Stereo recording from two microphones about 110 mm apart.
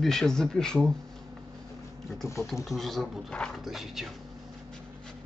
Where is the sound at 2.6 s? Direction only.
Centre (ahead or behind).